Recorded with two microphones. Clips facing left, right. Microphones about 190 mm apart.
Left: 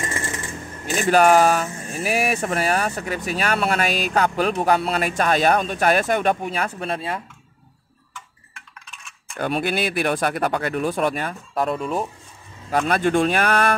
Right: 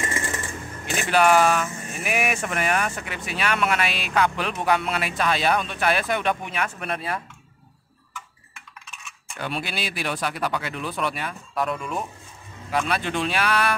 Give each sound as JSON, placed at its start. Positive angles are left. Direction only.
{"t": 0.8, "sound": "speech", "side_deg": 40}
{"t": 9.4, "sound": "speech", "side_deg": 50}
{"t": 12.7, "sound": "speech", "side_deg": 45}